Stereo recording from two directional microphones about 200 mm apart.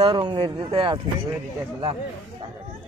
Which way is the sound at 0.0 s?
25° right (ahead or behind).